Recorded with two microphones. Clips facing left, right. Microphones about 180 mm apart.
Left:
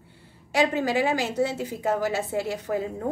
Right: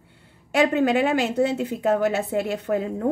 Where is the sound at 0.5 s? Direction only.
60° right (ahead or behind).